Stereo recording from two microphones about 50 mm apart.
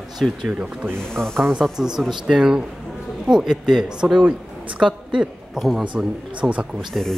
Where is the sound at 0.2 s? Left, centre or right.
Centre.